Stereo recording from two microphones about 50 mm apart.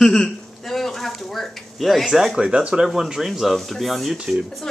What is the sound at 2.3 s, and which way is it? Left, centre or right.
Speech, centre.